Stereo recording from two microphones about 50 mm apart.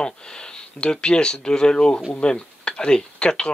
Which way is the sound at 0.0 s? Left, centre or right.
Centre.